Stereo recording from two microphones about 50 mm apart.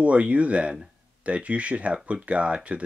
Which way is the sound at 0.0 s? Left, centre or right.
Right.